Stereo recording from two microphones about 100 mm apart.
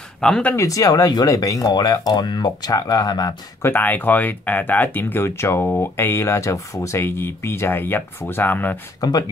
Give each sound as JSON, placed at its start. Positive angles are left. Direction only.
{"t": 0.2, "sound": "speech", "side_deg": 10}
{"t": 0.6, "sound": "speech", "side_deg": 35}
{"t": 3.6, "sound": "speech", "side_deg": 20}
{"t": 9.0, "sound": "speech", "side_deg": 45}